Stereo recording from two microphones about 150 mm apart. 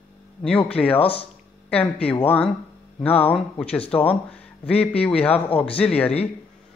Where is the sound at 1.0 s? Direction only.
40° left (ahead or behind).